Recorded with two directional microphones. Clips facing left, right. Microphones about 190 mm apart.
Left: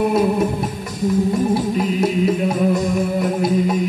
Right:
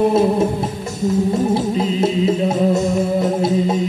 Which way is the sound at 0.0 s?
25° right (ahead or behind).